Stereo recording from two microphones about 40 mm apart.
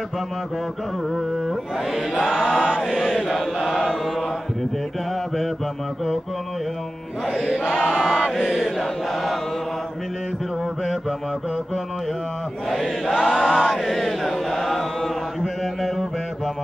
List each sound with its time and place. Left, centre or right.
1.1 s chant: centre
2.3 s choir: centre
3.6 s chant: centre
8.0 s chant: centre
12.6 s chant: centre
13.4 s choir: centre
13.7 s chant: centre